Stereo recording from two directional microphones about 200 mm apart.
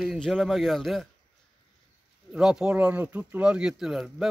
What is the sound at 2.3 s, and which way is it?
Speech, 5° right (ahead or behind).